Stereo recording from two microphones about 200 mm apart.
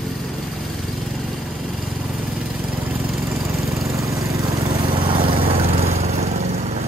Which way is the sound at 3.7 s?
15° right (ahead or behind).